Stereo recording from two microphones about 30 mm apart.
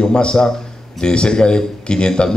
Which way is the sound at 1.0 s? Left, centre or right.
Left.